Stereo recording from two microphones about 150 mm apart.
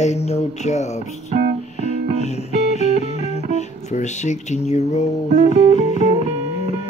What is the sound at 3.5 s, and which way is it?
Music, 50° left (ahead or behind).